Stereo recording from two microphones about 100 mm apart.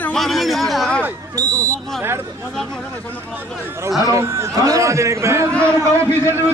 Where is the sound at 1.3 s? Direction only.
35° right (ahead or behind).